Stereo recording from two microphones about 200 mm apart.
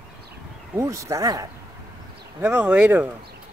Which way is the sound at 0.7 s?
15° right (ahead or behind).